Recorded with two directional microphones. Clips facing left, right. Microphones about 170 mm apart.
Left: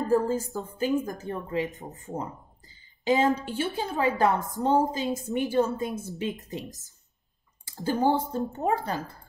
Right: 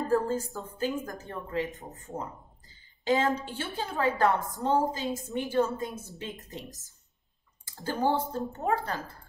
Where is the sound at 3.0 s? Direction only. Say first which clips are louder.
Left 3 dB; 15° left (ahead or behind).